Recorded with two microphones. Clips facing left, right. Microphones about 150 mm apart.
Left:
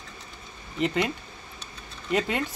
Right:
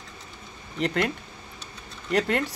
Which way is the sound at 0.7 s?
Centre (ahead or behind).